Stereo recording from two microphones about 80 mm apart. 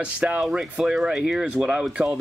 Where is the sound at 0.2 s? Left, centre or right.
Centre.